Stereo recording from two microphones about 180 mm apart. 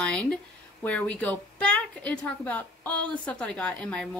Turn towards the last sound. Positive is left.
turn(degrees=5)  # may be behind; listen again after turning